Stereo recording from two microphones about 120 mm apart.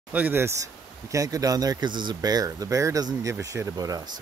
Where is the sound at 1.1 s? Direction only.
30° right (ahead or behind).